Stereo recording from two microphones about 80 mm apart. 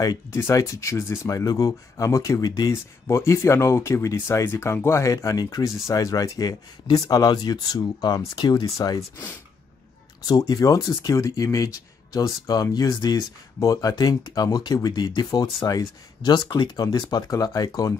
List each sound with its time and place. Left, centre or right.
0.0 s speech: left
1.3 s speech: left
8.6 s speech: left
15.6 s speech: left
16.3 s speech: left